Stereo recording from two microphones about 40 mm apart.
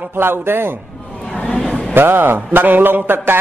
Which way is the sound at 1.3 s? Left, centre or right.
Left.